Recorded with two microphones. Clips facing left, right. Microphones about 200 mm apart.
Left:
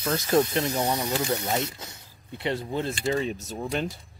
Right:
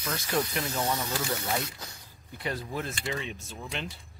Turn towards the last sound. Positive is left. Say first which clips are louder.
# left 8 dB
turn(degrees=40)  # may be behind; listen again after turning